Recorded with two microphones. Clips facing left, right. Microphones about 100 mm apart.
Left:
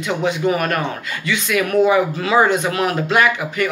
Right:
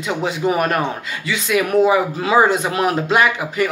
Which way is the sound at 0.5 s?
20° right (ahead or behind).